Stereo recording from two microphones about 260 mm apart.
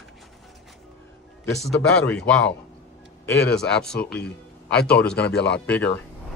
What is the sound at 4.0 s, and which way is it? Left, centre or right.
Speech, left.